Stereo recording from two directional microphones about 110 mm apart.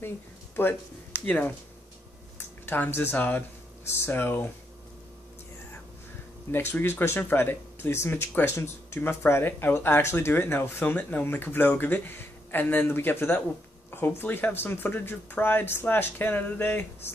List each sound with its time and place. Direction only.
1.2 s speech: 15° left (ahead or behind)
6.5 s speech: 20° left (ahead or behind)